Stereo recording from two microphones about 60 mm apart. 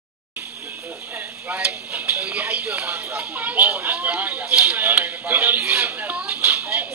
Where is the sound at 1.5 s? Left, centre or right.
Right.